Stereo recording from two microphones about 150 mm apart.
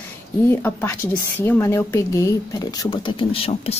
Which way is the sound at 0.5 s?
15° left (ahead or behind).